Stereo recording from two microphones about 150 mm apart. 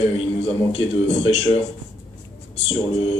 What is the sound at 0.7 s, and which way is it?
Speech, 45° left (ahead or behind).